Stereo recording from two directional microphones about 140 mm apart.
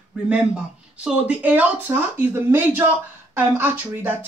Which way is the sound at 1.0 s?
10° right (ahead or behind).